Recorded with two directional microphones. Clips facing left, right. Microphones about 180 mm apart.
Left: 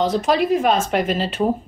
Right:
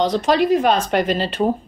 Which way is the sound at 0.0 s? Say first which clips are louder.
Right 1 dB; 5° left (ahead or behind).